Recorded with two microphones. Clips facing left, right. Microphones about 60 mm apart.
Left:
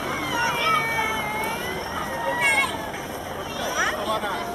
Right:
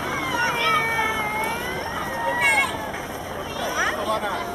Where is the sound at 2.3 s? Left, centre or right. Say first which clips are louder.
Right 2 dB; centre.